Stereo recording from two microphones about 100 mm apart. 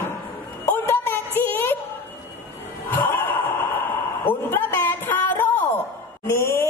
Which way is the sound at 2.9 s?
20° left (ahead or behind).